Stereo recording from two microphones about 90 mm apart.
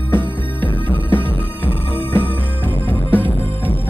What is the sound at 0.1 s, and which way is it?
Music, 20° left (ahead or behind).